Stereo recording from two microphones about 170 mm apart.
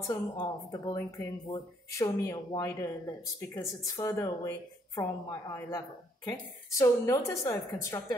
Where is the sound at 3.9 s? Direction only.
20° left (ahead or behind).